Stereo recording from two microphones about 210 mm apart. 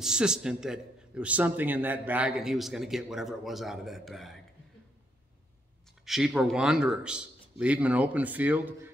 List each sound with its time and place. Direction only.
0.0 s a man's voice: 5° right (ahead or behind)
6.0 s a man's voice: centre (ahead or behind)